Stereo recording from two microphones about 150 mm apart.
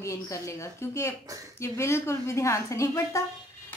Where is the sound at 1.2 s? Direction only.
20° right (ahead or behind).